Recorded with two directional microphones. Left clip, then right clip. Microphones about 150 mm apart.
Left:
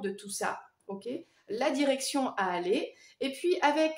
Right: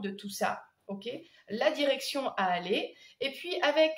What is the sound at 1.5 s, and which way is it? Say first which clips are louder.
A woman's voice: right 1 dB; 50° left (ahead or behind).